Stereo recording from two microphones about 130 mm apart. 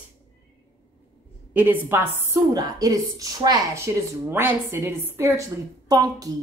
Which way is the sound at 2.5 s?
30° right (ahead or behind).